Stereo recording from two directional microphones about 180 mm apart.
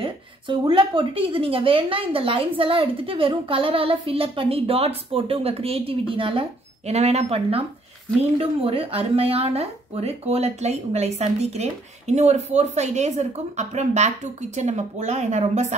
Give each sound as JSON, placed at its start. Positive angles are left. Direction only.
{"t": 0.0, "sound": "a woman's voice", "side_deg": -30}